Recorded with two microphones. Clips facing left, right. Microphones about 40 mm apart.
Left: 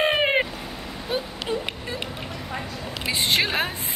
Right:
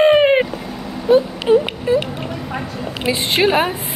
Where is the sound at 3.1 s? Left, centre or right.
Centre.